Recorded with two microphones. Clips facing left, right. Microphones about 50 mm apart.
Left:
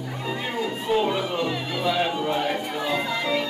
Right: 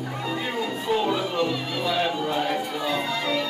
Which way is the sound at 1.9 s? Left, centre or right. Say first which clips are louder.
Even; centre.